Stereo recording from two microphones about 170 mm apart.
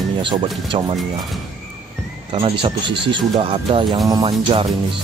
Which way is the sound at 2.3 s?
30° right (ahead or behind).